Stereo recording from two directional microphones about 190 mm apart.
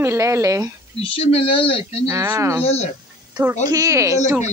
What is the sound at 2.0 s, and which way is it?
Speech, 15° right (ahead or behind).